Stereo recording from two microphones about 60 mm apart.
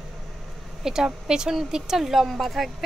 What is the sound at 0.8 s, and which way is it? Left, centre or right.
Speech, centre.